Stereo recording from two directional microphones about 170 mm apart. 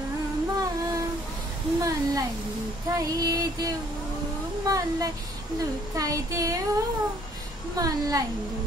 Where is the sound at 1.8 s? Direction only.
20° right (ahead or behind).